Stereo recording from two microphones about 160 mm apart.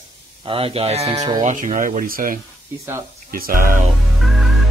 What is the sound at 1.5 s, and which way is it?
Speech, 55° right (ahead or behind).